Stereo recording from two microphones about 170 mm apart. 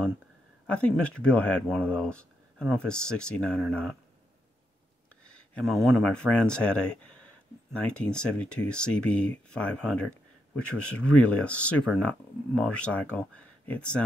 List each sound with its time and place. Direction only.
0.7 s speech: 10° left (ahead or behind)
5.2 s speech: 5° left (ahead or behind)